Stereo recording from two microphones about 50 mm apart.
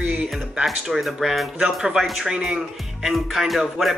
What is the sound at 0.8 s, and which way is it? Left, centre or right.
Music, centre.